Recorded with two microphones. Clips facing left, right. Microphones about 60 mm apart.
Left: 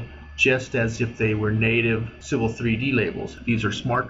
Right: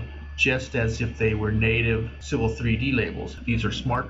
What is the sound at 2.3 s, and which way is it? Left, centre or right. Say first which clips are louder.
Speech: left 2 dB; centre.